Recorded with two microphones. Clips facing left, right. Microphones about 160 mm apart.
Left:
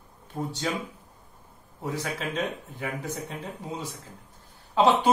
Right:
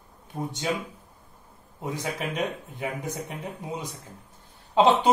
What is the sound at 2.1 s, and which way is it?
A man's voice, 15° right (ahead or behind).